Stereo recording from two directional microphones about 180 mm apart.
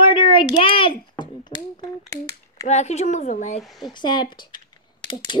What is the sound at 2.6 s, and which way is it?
Speech, 40° left (ahead or behind).